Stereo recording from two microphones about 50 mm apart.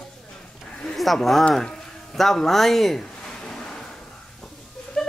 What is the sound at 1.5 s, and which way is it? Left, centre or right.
Speech, centre.